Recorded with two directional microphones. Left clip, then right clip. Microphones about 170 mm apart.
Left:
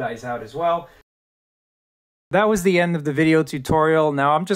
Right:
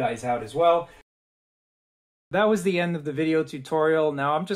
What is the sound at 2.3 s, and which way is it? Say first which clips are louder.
Speech: left 4 dB; 40° left (ahead or behind).